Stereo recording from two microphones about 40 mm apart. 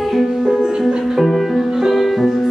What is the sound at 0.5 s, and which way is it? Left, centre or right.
Music, centre.